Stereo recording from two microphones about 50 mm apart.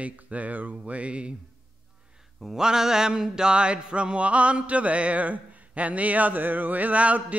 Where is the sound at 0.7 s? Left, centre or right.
Right.